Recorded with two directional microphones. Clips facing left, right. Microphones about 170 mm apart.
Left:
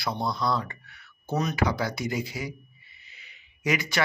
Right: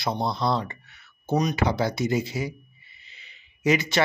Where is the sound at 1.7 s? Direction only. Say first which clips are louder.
Right 4 dB; 25° right (ahead or behind).